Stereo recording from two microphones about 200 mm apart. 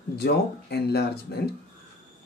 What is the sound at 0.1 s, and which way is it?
Speech, 55° left (ahead or behind).